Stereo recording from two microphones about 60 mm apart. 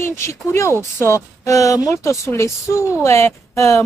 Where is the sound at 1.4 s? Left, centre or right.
Left.